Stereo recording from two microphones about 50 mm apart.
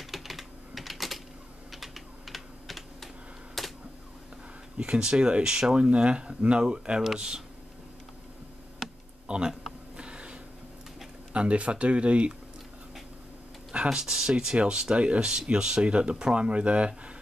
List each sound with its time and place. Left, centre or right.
0.0 s typing: centre
3.6 s a sound: centre
4.7 s speech: centre
9.3 s speech: centre
9.9 s a sound: right
11.3 s speech: right
13.8 s speech: centre